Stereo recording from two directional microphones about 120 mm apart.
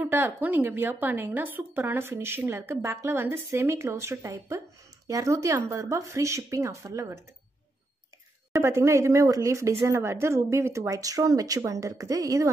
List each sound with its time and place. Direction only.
0.0 s a woman's voice: 15° right (ahead or behind)
8.5 s speech: 25° right (ahead or behind)